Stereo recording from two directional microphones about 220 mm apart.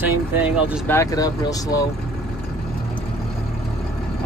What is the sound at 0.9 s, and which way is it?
Speech, 15° left (ahead or behind).